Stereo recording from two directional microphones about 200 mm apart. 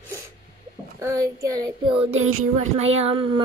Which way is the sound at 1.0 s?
15° right (ahead or behind).